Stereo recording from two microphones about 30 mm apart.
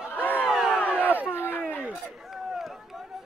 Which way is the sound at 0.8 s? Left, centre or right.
Left.